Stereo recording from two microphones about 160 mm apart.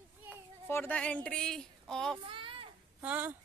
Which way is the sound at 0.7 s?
15° left (ahead or behind).